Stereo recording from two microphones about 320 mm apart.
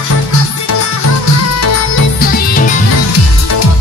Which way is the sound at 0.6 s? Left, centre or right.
Left.